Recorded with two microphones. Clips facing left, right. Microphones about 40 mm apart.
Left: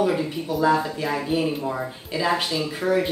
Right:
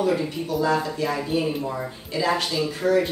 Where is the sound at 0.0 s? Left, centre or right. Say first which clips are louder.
Left 1 dB; centre.